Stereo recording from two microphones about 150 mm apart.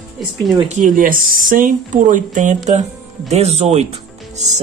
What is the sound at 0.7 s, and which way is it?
Speech, 60° right (ahead or behind).